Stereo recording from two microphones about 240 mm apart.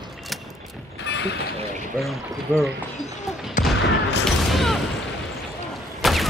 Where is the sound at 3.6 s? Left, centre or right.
Left.